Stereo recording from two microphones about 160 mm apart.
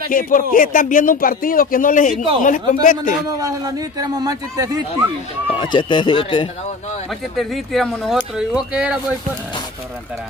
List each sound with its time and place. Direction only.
0.1 s speech: 60° left (ahead or behind)
3.3 s speech: 20° right (ahead or behind)
5.5 s speech: 30° left (ahead or behind)
7.3 s speech: centre (ahead or behind)